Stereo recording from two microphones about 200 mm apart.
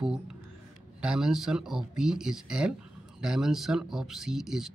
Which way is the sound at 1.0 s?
5° right (ahead or behind).